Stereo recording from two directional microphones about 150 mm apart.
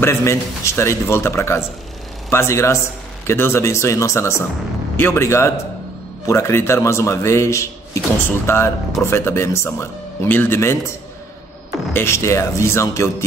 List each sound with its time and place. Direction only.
0.0 s speech: 20° left (ahead or behind)
11.9 s speech: 15° left (ahead or behind)